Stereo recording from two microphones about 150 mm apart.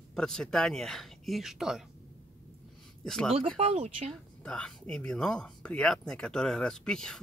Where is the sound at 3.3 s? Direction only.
40° right (ahead or behind).